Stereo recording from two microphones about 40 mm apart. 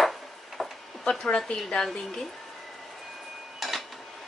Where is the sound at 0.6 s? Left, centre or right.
Centre.